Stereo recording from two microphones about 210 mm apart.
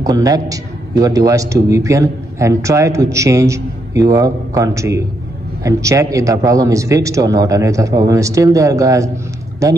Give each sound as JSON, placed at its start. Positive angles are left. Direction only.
{"t": 0.0, "sound": "a man's voice", "side_deg": -15}